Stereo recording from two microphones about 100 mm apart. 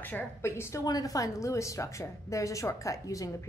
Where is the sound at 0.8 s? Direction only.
40° left (ahead or behind).